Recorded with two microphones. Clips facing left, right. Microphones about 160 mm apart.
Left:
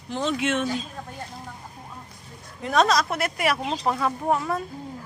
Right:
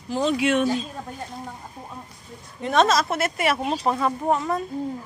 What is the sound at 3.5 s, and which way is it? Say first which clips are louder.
Speech: right 2 dB; 15° right (ahead or behind).